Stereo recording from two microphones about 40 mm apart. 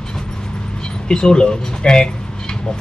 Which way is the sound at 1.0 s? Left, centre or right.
Centre.